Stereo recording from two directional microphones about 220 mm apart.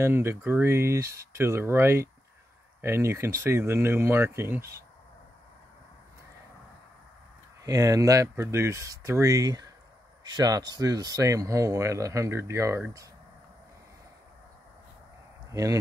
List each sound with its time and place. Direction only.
0.0 s speech: 10° right (ahead or behind)
7.6 s speech: 15° right (ahead or behind)
15.5 s speech: 15° right (ahead or behind)